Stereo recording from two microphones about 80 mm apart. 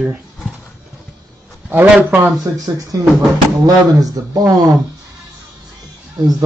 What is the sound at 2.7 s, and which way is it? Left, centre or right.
Speech, right.